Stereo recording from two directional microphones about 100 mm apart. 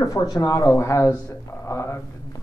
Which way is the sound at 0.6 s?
30° left (ahead or behind).